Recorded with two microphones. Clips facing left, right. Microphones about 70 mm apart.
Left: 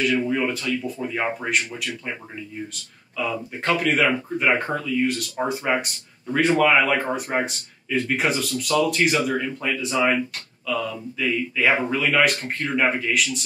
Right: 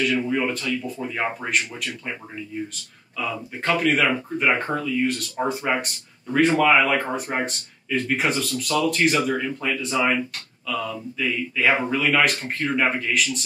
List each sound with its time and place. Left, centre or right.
0.3 s speech: centre
3.2 s speech: centre